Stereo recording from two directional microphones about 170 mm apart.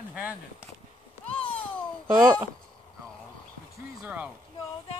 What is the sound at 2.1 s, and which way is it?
Speech, 10° right (ahead or behind).